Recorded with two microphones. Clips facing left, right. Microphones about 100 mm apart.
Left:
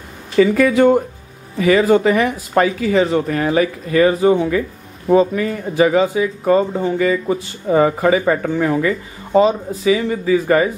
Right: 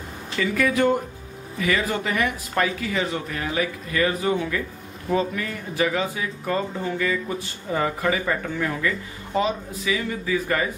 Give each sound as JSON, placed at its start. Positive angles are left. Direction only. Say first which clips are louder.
{"t": 0.4, "sound": "speech", "louder": "left 9 dB", "side_deg": 35}
{"t": 3.3, "sound": "speech", "louder": "left 10 dB", "side_deg": 45}